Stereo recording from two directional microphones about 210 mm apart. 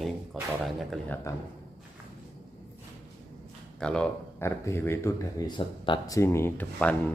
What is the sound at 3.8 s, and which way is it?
Speech, 5° left (ahead or behind).